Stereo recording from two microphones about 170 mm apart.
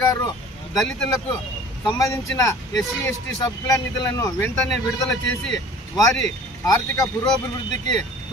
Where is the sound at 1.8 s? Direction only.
20° left (ahead or behind).